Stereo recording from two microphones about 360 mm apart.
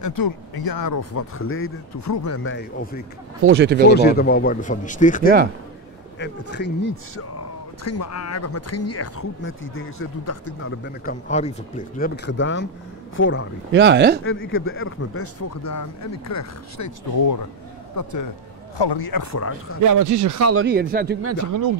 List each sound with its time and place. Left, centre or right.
0.0 s speech: left
1.1 s speech: left
2.0 s speech: left
3.4 s speech: right
3.9 s speech: left
11.1 s speech: centre
13.7 s speech: right
14.2 s speech: left
15.4 s speech: left
18.9 s speech: left
19.3 s speech: left
19.8 s speech: right
20.6 s speech: right
21.2 s speech: right